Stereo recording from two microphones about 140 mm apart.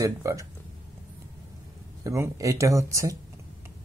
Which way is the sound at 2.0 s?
20° right (ahead or behind).